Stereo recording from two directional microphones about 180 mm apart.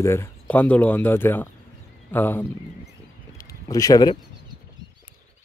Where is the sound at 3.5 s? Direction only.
20° left (ahead or behind).